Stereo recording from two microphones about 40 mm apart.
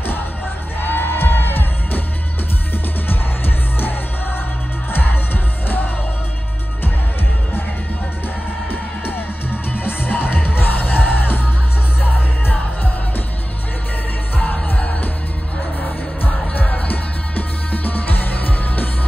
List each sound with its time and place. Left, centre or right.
0.7 s music: left
3.1 s music: left
4.9 s music: left
9.8 s music: left
16.6 s music: left